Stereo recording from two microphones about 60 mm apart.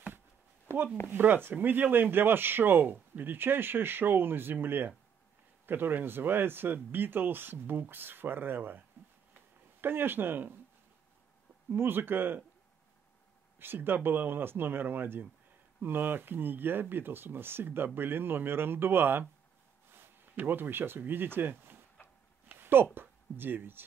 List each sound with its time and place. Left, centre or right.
1.0 s speech: right
11.7 s speech: right
13.6 s speech: right
22.6 s a sound: right
22.9 s speech: right